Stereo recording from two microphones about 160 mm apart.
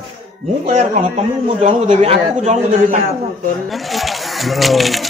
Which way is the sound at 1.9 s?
45° right (ahead or behind).